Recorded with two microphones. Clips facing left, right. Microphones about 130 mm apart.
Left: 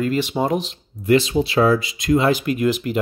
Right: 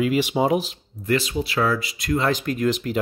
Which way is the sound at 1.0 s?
20° left (ahead or behind).